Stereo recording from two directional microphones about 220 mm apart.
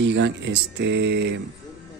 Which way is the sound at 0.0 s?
55° right (ahead or behind).